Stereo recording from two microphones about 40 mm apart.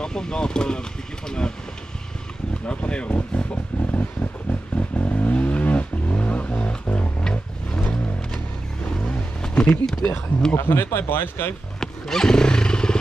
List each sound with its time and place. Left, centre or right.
0.0 s speech: centre
2.6 s speech: left
3.8 s vehicle: left
6.9 s music: left
8.8 s vehicle: left
9.4 s a sound: left
9.8 s speech: centre
10.6 s speech: left
11.8 s wild animals: centre